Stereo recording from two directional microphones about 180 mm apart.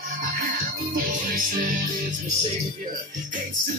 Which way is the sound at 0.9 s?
50° right (ahead or behind).